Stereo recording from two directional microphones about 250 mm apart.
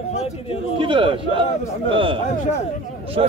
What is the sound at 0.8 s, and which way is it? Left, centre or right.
A man's voice, centre.